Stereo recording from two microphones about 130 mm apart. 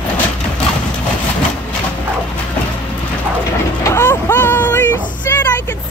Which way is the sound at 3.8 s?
20° left (ahead or behind).